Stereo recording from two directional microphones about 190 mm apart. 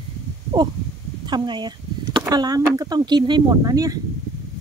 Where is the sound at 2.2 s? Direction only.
20° right (ahead or behind).